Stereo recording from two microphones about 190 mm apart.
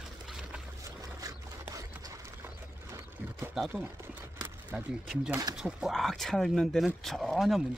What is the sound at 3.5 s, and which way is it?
Speech, 5° right (ahead or behind).